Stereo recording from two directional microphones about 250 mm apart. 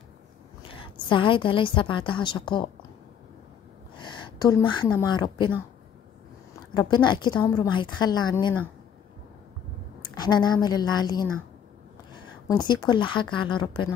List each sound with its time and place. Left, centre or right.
0.6 s a woman's voice: left
4.0 s a woman's voice: centre
6.7 s a woman's voice: centre
10.1 s a woman's voice: centre